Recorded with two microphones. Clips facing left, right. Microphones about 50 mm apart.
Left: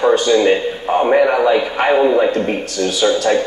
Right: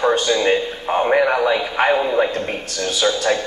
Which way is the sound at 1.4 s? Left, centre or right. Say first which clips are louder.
Left 3 dB; centre.